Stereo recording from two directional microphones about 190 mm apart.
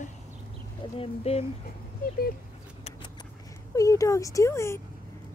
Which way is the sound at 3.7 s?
15° left (ahead or behind).